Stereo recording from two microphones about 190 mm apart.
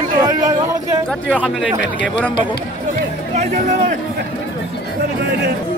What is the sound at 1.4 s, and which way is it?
Speech, 5° right (ahead or behind).